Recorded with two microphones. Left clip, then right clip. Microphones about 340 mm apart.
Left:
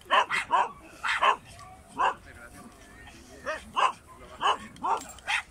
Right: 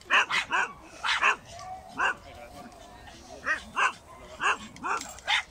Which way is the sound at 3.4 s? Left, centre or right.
Centre.